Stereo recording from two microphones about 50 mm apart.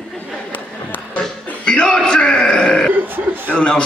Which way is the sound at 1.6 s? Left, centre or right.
Centre.